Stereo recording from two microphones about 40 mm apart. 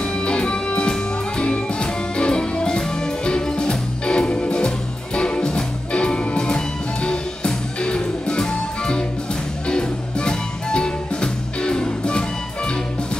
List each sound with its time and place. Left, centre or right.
0.0 s music: left